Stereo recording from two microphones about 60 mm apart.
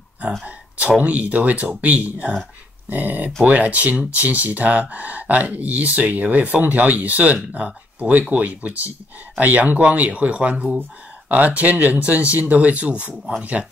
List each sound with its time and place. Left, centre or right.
0.5 s speech: right